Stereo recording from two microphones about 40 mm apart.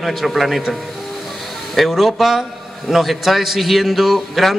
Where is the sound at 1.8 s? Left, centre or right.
Centre.